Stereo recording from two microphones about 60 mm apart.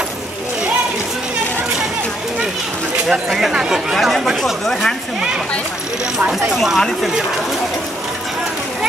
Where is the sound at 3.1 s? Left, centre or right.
Centre.